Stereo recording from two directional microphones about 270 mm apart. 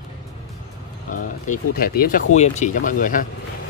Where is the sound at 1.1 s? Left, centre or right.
Left.